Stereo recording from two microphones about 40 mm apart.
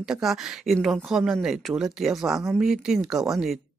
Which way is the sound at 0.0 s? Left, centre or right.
Centre.